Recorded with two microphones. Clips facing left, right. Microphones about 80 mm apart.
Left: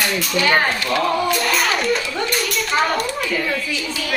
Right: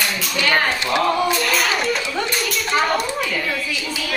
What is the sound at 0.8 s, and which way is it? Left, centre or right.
Speech, right.